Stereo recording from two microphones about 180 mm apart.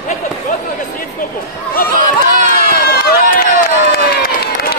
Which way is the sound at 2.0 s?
45° right (ahead or behind).